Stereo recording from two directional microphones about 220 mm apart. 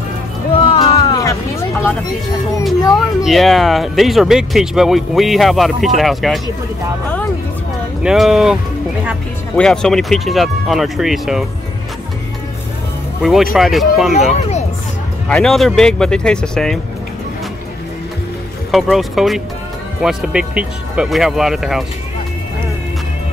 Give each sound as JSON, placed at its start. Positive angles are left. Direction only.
{"t": 0.6, "sound": "a sound", "side_deg": 25}
{"t": 1.0, "sound": "vehicle", "side_deg": 15}
{"t": 2.8, "sound": "speech", "side_deg": 15}
{"t": 3.3, "sound": "speech", "side_deg": 0}
{"t": 8.0, "sound": "speech", "side_deg": 0}
{"t": 9.6, "sound": "speech", "side_deg": 5}
{"t": 13.2, "sound": "speech", "side_deg": 0}
{"t": 15.2, "sound": "speech", "side_deg": 0}
{"t": 18.7, "sound": "speech", "side_deg": 0}